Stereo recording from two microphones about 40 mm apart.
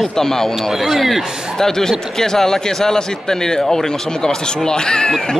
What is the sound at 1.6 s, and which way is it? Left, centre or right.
A man's voice, centre.